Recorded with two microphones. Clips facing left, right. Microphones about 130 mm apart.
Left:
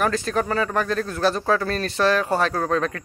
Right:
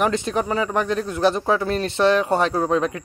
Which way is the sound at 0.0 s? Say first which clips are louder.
Right 1 dB; 20° right (ahead or behind).